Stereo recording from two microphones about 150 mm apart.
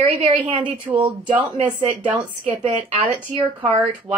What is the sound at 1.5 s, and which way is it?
Speech, 35° right (ahead or behind).